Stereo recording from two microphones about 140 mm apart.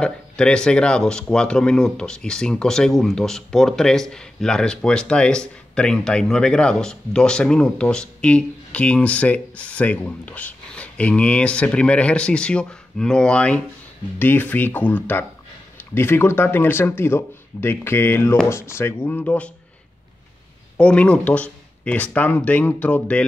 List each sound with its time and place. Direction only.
0.0 s speech: 5° left (ahead or behind)
20.7 s speech: 10° left (ahead or behind)